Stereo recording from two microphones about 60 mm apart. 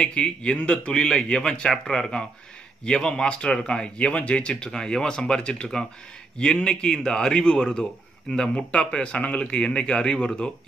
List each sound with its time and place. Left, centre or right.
0.0 s a man's voice: centre